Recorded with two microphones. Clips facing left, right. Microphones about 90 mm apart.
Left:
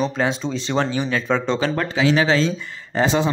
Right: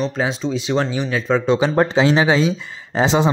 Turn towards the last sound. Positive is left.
turn(degrees=-20)  # may be behind; listen again after turning